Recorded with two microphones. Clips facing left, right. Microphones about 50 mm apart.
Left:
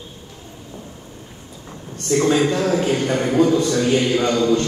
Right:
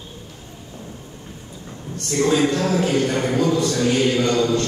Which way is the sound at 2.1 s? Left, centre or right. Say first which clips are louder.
Left 2 dB; centre.